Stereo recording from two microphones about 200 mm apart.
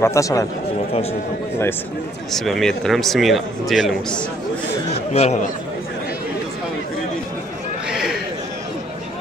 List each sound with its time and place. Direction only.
0.0 s a man's voice: 15° left (ahead or behind)
2.3 s speech: centre (ahead or behind)
5.1 s speech: 30° left (ahead or behind)
7.9 s a sound: 5° right (ahead or behind)